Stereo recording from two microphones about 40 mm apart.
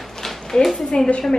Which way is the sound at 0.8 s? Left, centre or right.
Centre.